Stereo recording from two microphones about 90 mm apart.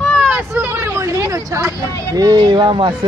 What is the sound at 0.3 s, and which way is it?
Hubbub, 20° right (ahead or behind).